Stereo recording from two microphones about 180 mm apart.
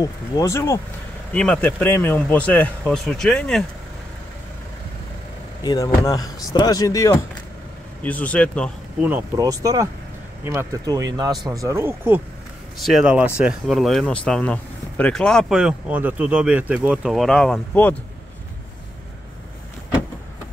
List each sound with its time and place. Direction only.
0.0 s speech: 20° left (ahead or behind)
5.6 s speech: 20° left (ahead or behind)
9.0 s speech: 15° right (ahead or behind)
12.7 s speech: centre (ahead or behind)